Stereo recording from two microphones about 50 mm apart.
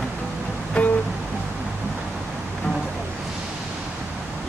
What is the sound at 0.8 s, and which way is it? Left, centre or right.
Music, left.